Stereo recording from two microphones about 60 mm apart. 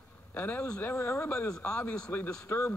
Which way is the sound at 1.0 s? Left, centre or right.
Left.